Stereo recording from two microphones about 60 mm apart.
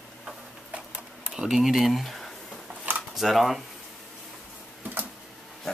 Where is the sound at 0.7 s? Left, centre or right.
Right.